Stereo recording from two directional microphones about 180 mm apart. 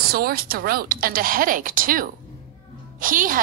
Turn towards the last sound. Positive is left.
turn(degrees=-50)  # may be behind; listen again after turning